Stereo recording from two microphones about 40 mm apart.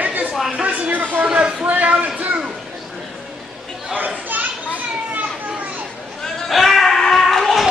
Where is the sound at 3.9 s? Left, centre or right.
Right.